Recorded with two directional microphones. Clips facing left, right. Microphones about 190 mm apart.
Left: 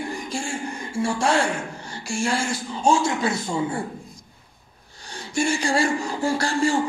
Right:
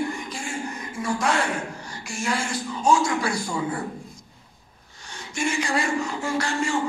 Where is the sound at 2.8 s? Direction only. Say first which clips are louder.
Left 1 dB; 25° left (ahead or behind).